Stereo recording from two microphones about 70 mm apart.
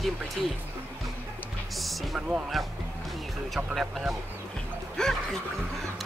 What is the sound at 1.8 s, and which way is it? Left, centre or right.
Speech, centre.